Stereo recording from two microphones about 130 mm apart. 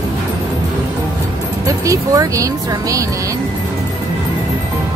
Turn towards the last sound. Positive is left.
turn(degrees=-25)  # may be behind; listen again after turning